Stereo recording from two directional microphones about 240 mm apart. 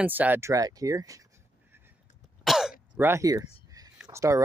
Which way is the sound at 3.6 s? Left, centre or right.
Centre.